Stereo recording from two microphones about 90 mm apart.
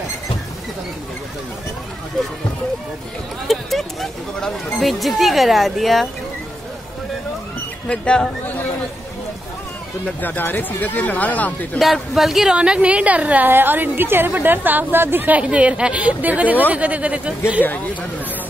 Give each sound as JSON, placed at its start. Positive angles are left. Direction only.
{"t": 3.4, "sound": "speech", "side_deg": 0}
{"t": 7.9, "sound": "speech", "side_deg": 10}
{"t": 10.2, "sound": "speech", "side_deg": 20}
{"t": 11.8, "sound": "a woman's voice", "side_deg": 0}
{"t": 17.6, "sound": "speech", "side_deg": 20}